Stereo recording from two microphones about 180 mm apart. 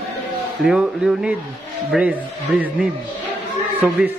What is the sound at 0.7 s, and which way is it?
A man's voice, 5° right (ahead or behind).